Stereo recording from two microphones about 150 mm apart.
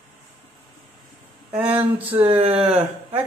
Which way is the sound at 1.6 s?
10° right (ahead or behind).